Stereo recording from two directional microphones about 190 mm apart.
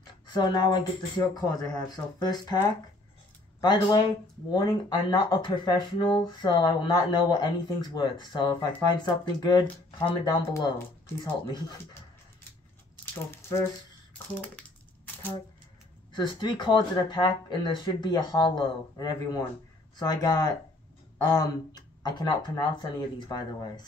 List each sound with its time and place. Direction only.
0.0 s speech: 20° left (ahead or behind)
3.6 s speech: 25° left (ahead or behind)
12.9 s squish: 15° left (ahead or behind)
14.1 s speech: 10° left (ahead or behind)
16.1 s speech: 25° left (ahead or behind)